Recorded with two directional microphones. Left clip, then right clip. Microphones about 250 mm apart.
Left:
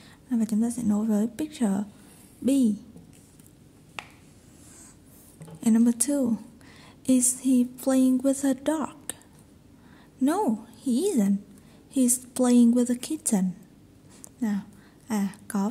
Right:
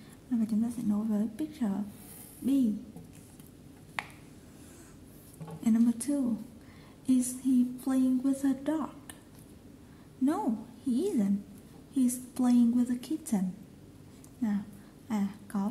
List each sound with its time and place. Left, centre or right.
0.3 s speech: left
5.6 s a woman's voice: left
10.2 s a woman's voice: left
15.0 s speech: left